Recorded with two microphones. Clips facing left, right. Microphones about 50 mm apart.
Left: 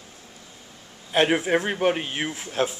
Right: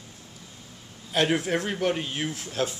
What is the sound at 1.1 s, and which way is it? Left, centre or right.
A man's voice, left.